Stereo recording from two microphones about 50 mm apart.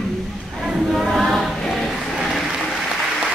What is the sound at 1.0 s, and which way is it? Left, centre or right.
Music, centre.